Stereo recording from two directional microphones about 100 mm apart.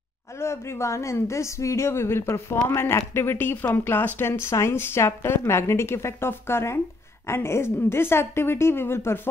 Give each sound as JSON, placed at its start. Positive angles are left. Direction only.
{"t": 0.4, "sound": "speech", "side_deg": 25}